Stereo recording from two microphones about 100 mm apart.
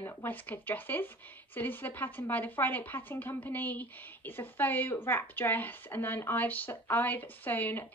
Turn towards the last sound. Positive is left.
turn(degrees=20)  # may be behind; listen again after turning